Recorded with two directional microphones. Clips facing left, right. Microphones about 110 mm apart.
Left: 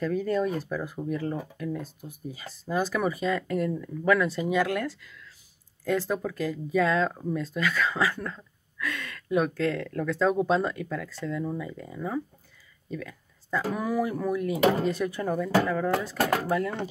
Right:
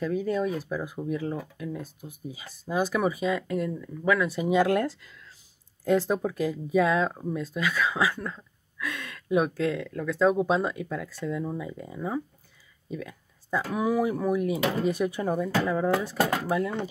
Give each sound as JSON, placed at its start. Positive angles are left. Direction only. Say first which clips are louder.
{"t": 0.0, "sound": "speech", "louder": "left 1 dB", "side_deg": -10}
{"t": 4.5, "sound": "speech", "louder": "right 3 dB", "side_deg": -25}
{"t": 12.9, "sound": "a sound", "louder": "even", "side_deg": -15}
{"t": 13.7, "sound": "speech", "louder": "right 6 dB", "side_deg": -15}